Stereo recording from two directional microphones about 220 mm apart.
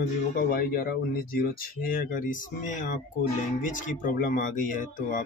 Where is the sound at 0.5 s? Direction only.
45° left (ahead or behind).